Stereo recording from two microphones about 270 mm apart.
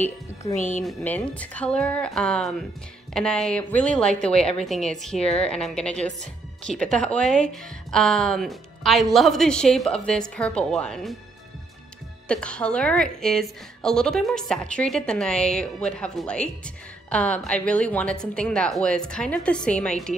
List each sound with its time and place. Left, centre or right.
0.0 s a woman's voice: centre
0.6 s a woman's voice: left
0.8 s a woman's voice: centre
12.3 s a woman's voice: centre